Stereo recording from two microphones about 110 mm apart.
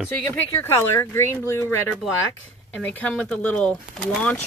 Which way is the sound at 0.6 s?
20° left (ahead or behind).